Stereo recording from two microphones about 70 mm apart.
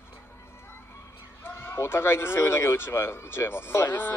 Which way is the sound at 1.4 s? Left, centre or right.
Left.